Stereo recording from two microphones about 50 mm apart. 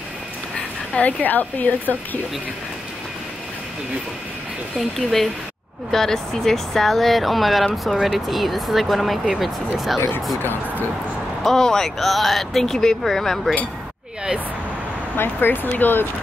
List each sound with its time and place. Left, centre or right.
0.9 s a woman's voice: left
4.7 s speech: centre
10.4 s speech: left
11.4 s speech: centre
15.1 s speech: left